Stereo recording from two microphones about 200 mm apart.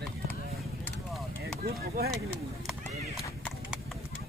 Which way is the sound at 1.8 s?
50° right (ahead or behind).